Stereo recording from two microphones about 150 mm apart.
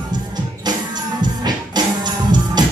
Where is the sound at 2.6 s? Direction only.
30° right (ahead or behind).